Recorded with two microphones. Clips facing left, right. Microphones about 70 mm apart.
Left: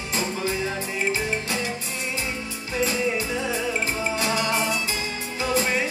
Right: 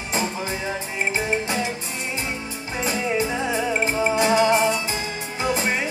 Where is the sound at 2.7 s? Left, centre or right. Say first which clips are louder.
Even; right.